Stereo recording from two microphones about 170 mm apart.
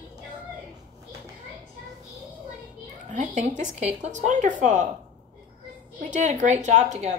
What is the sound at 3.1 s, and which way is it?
Speech, 45° right (ahead or behind).